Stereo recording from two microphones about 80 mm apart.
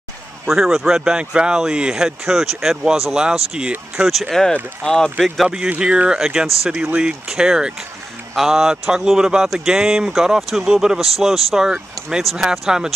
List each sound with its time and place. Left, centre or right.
0.5 s speech: centre
4.0 s speech: centre
5.2 s speech: centre
5.7 s speech: centre